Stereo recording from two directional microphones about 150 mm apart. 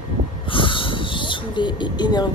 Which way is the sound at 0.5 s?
35° left (ahead or behind).